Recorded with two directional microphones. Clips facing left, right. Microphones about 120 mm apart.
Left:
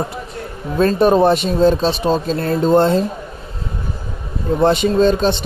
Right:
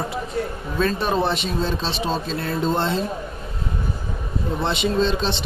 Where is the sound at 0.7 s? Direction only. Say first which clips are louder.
Left 9 dB; 45° left (ahead or behind).